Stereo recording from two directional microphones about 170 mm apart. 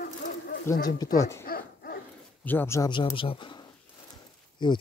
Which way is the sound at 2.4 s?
10° left (ahead or behind).